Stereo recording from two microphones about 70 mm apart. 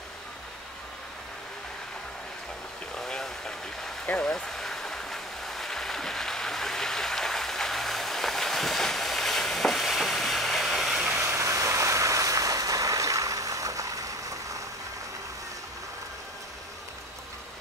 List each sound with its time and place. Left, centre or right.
3.0 s vehicle: centre
4.0 s a sound: centre
11.1 s vehicle: right